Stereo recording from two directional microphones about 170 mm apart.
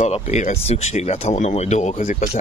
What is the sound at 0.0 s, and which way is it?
Speech, 40° left (ahead or behind).